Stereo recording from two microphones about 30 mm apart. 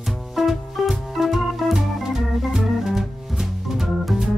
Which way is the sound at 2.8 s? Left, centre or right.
Centre.